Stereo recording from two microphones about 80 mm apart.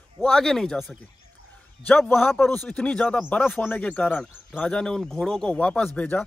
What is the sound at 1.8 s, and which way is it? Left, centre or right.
Speech, centre.